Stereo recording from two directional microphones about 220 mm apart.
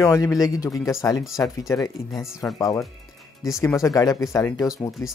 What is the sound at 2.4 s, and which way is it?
Speech, 15° left (ahead or behind).